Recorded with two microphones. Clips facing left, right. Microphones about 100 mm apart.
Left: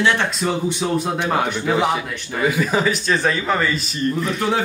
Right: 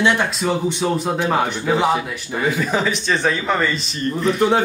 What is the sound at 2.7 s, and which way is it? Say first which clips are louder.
Speech: left 1 dB; centre (ahead or behind).